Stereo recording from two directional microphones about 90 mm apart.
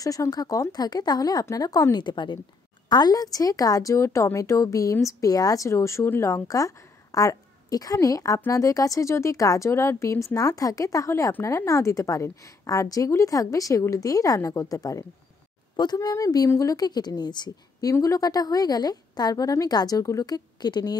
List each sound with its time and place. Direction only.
0.0 s a woman's voice: 40° left (ahead or behind); by 2.4 s 60° left (ahead or behind)
2.9 s a woman's voice: 45° left (ahead or behind)
17.9 s a woman's voice: 35° left (ahead or behind)